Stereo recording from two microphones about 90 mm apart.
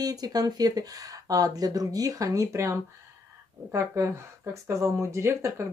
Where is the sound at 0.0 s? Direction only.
45° right (ahead or behind).